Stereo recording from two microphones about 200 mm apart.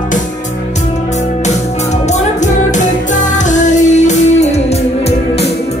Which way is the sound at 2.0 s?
35° left (ahead or behind).